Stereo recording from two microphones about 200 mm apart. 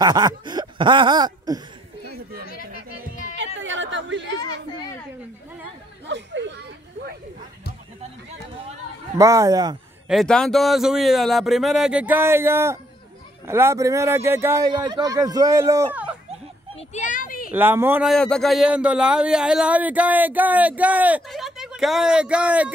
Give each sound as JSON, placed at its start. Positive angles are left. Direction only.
{"t": 0.0, "sound": "a sound", "side_deg": -20}
{"t": 2.4, "sound": "music", "side_deg": 45}
{"t": 3.3, "sound": "a sound", "side_deg": -70}
{"t": 6.0, "sound": "speech", "side_deg": -65}
{"t": 9.2, "sound": "speech", "side_deg": -15}
{"t": 10.0, "sound": "speech", "side_deg": 0}
{"t": 16.9, "sound": "a sound", "side_deg": 40}
{"t": 17.6, "sound": "speech", "side_deg": -10}
{"t": 18.1, "sound": "speech", "side_deg": 5}